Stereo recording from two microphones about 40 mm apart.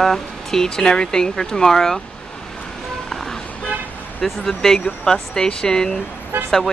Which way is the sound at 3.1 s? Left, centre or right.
Centre.